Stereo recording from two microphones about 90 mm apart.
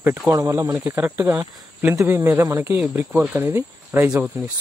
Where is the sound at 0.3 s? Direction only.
30° right (ahead or behind).